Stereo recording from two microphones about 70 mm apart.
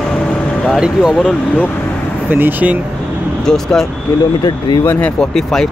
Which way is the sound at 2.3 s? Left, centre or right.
Right.